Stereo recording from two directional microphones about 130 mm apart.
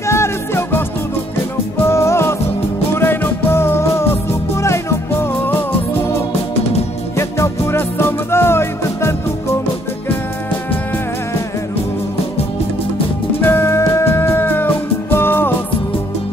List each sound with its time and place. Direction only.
0.0 s music: 20° left (ahead or behind)
1.9 s music: 20° left (ahead or behind)
7.2 s music: 20° left (ahead or behind)
13.4 s music: 15° left (ahead or behind)